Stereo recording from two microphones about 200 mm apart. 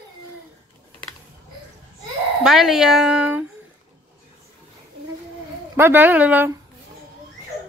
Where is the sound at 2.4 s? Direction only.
Centre (ahead or behind).